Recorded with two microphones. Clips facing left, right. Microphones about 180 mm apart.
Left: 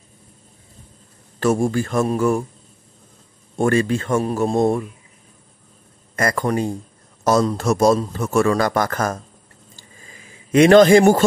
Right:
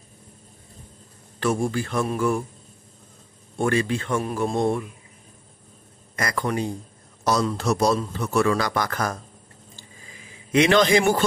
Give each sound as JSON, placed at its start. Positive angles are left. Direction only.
{"t": 1.4, "sound": "a man's voice", "side_deg": 45}
{"t": 3.5, "sound": "a man's voice", "side_deg": 45}
{"t": 6.1, "sound": "a man's voice", "side_deg": 45}
{"t": 10.5, "sound": "a man's voice", "side_deg": 45}